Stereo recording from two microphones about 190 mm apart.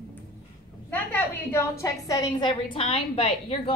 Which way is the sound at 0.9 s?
10° left (ahead or behind).